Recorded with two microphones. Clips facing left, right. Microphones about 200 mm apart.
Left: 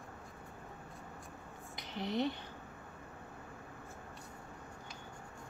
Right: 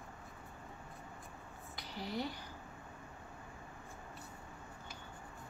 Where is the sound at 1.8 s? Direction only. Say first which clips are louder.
Left 5 dB; 20° left (ahead or behind).